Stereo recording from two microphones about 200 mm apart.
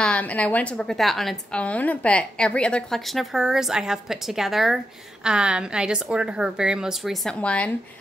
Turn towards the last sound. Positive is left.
turn(degrees=5)  # may be behind; listen again after turning